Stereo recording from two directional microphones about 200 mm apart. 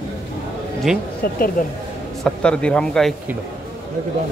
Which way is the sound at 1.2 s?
50° left (ahead or behind).